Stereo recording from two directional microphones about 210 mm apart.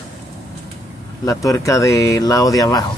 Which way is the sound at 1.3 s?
15° left (ahead or behind).